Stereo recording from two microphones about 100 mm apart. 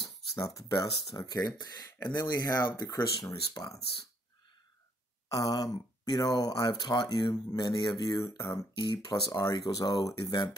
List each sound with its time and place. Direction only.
0.0 s speech: 35° left (ahead or behind)
5.3 s speech: 35° left (ahead or behind)
8.4 s speech: 30° left (ahead or behind)
8.7 s speech: 45° left (ahead or behind)